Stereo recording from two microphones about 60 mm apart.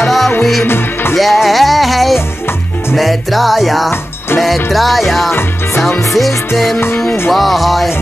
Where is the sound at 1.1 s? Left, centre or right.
Centre.